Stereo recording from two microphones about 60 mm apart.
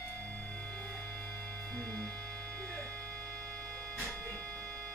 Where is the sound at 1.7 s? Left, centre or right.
Centre.